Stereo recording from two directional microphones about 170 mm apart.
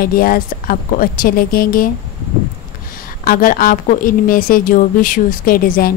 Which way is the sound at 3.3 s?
55° left (ahead or behind).